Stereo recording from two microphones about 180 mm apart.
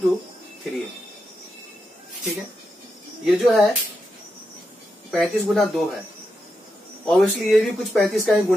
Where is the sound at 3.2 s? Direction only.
Centre (ahead or behind).